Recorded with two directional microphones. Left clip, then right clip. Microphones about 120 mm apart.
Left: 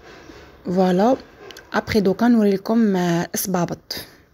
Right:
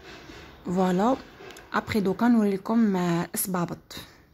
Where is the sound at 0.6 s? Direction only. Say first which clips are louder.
Left 7 dB; 15° left (ahead or behind).